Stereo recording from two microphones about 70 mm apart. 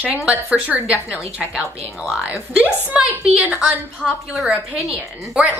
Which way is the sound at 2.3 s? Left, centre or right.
Right.